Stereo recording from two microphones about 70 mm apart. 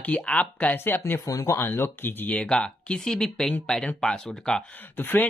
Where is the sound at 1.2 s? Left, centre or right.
Left.